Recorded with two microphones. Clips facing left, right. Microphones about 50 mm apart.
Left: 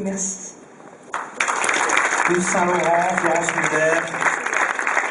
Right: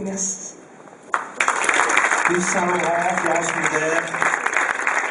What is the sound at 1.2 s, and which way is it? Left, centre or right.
Applause, centre.